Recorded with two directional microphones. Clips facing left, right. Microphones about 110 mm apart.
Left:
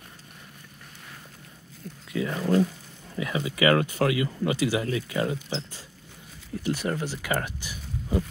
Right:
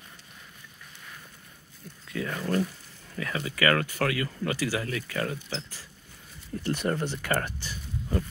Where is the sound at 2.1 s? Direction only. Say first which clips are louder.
Left 5 dB; 20° left (ahead or behind).